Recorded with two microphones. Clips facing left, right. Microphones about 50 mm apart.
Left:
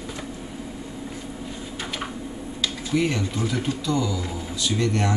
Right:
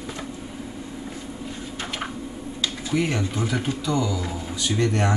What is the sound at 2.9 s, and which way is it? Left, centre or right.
Speech, centre.